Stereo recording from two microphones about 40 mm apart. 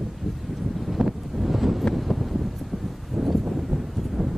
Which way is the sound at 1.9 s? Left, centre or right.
Centre.